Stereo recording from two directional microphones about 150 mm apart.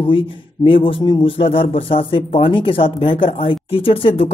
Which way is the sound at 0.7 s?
35° left (ahead or behind).